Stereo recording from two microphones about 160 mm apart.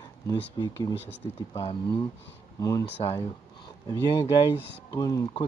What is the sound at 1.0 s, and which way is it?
Speech, 35° left (ahead or behind).